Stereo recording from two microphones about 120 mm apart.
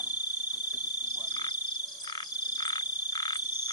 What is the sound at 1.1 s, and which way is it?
Frog, 35° left (ahead or behind).